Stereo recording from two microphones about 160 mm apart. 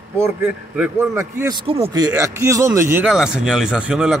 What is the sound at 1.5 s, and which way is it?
Speech, 35° right (ahead or behind).